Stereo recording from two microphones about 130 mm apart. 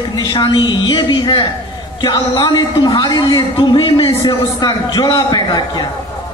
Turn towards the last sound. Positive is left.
turn(degrees=30)  # may be behind; listen again after turning